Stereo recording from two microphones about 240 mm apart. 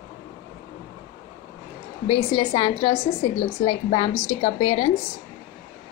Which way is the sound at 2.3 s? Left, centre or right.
Left.